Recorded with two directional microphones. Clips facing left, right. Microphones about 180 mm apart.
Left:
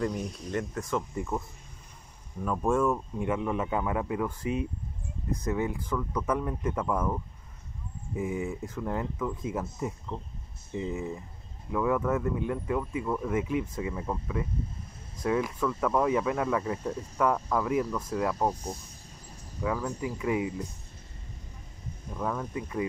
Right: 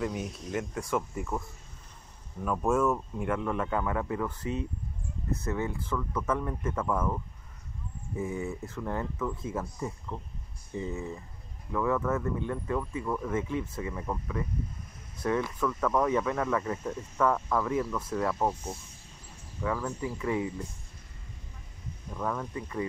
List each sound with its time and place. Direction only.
0.0 s speech: 5° right (ahead or behind)
2.4 s speech: 10° left (ahead or behind)
8.2 s speech: 15° left (ahead or behind)
19.6 s speech: 15° left (ahead or behind)
22.1 s speech: 5° left (ahead or behind)
22.5 s speech: 15° left (ahead or behind)